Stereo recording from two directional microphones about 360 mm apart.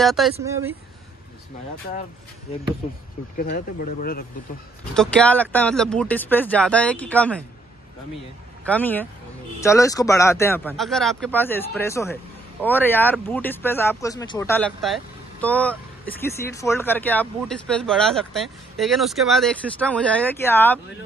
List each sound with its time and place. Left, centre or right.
0.0 s speech: centre
3.3 s speech: left
4.9 s speech: centre
8.6 s speech: centre